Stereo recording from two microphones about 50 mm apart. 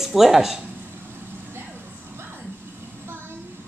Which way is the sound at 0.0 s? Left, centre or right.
Centre.